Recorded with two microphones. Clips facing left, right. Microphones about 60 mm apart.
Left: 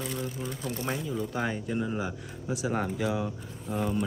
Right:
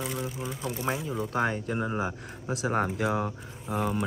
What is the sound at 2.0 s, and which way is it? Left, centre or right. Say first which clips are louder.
Speech: right 2 dB; right.